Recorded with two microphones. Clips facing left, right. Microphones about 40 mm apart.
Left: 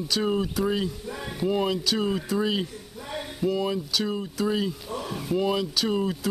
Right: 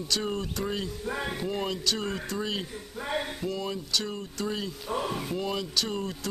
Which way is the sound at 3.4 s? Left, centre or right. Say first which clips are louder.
Left 7 dB; centre.